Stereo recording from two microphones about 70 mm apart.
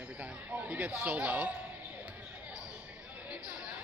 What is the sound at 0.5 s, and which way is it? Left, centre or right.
Speech, right.